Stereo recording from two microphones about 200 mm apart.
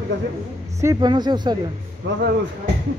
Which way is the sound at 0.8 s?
20° right (ahead or behind).